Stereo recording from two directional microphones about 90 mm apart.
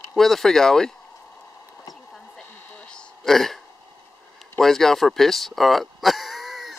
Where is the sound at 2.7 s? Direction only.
10° left (ahead or behind).